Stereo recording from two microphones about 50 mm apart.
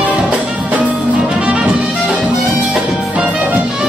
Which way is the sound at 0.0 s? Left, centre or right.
Right.